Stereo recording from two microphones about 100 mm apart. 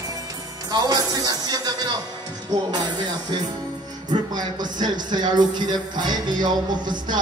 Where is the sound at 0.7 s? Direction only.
40° right (ahead or behind).